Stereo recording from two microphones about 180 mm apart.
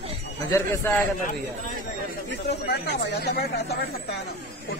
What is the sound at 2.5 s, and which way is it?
Speech, 70° left (ahead or behind).